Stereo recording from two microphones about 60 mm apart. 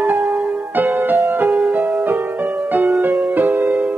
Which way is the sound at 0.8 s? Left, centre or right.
Right.